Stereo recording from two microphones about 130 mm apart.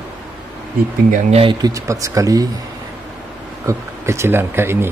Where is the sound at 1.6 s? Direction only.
25° right (ahead or behind).